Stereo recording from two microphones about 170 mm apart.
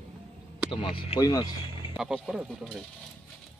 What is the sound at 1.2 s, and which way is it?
Speech, 25° left (ahead or behind).